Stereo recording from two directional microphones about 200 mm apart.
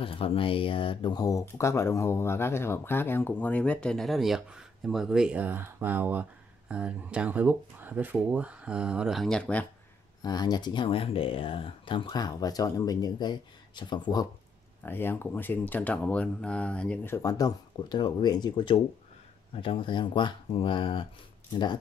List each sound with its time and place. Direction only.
0.0 s speech: 25° left (ahead or behind); by 9.7 s 5° left (ahead or behind)
10.2 s speech: 20° left (ahead or behind)
14.8 s speech: 10° left (ahead or behind); by 21.1 s 25° left (ahead or behind)